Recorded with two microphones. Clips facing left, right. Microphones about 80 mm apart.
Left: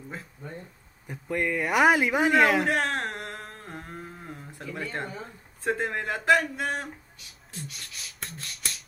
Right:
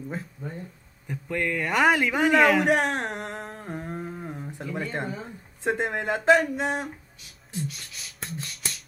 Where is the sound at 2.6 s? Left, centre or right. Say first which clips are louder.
Right 3 dB; centre.